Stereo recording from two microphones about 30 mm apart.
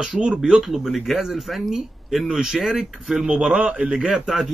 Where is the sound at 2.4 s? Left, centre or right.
Right.